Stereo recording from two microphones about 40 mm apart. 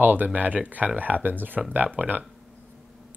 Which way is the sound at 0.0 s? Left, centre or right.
Right.